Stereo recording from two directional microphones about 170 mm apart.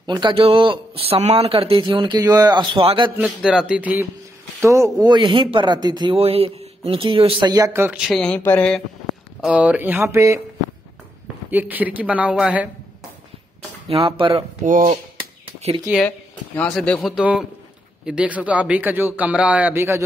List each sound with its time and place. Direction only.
0.0 s speech: 25° right (ahead or behind)
3.2 s a man's voice: 5° right (ahead or behind); by 7.5 s 30° right (ahead or behind)
7.5 s speech: 15° right (ahead or behind); by 8.8 s 5° left (ahead or behind)
9.4 s a man's voice: 5° right (ahead or behind)
11.5 s a man's voice: 10° right (ahead or behind)
13.8 s speech: 30° right (ahead or behind)
14.6 s dishes: 50° right (ahead or behind)
16.5 s a man's voice: 5° left (ahead or behind); by 20.0 s 15° right (ahead or behind)